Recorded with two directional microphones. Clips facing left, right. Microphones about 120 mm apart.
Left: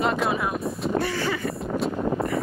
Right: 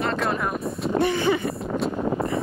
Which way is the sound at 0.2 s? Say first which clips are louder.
Even; 5° left (ahead or behind).